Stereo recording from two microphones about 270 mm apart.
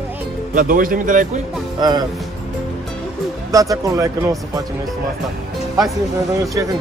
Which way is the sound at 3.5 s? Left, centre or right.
Centre.